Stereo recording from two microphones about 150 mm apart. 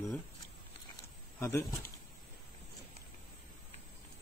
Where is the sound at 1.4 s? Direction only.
20° left (ahead or behind).